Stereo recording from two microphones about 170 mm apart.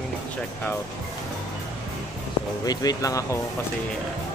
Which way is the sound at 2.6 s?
25° left (ahead or behind).